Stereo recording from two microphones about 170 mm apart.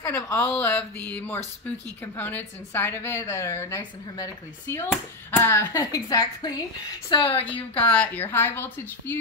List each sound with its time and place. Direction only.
0.0 s a woman's voice: 15° left (ahead or behind)
7.4 s a woman's voice: 10° left (ahead or behind)